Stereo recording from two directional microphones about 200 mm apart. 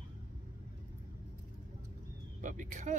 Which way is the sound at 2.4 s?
40° right (ahead or behind).